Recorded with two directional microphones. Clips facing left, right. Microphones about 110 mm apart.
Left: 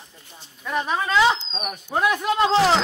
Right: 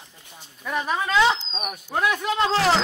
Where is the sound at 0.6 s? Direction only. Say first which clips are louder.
Left 1 dB; centre (ahead or behind).